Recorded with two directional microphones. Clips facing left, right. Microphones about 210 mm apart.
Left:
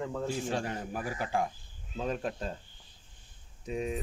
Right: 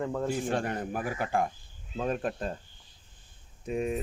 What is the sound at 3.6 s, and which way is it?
Speech, 55° right (ahead or behind).